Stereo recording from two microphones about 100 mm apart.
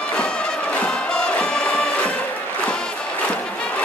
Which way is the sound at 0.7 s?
10° left (ahead or behind).